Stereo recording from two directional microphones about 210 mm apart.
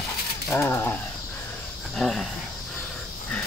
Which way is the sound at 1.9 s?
Centre (ahead or behind).